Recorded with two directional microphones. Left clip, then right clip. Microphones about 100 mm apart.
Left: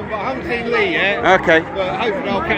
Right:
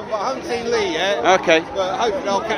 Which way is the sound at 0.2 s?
65° right (ahead or behind).